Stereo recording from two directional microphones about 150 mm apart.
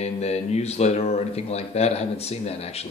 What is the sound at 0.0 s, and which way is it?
Speech, 45° left (ahead or behind).